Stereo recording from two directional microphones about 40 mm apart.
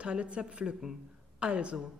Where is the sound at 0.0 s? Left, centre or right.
Right.